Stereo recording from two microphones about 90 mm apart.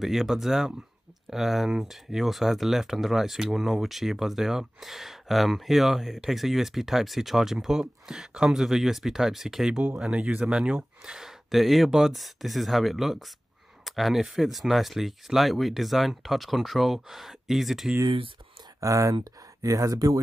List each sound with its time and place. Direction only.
0.0 s speech: centre (ahead or behind)
18.8 s speech: 35° right (ahead or behind)